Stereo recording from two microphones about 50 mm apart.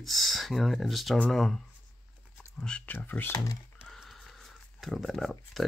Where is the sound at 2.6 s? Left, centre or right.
Centre.